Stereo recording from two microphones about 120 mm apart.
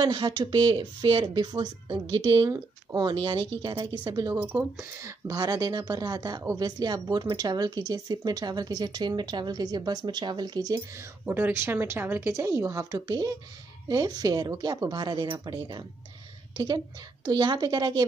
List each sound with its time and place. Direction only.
0.0 s a woman's voice: 40° right (ahead or behind)
4.4 s a woman's voice: 15° right (ahead or behind); by 10.8 s 35° right (ahead or behind)
11.2 s a woman's voice: 15° right (ahead or behind); by 18.0 s 35° right (ahead or behind)